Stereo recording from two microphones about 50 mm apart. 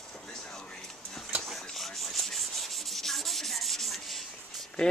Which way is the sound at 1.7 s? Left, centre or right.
Centre.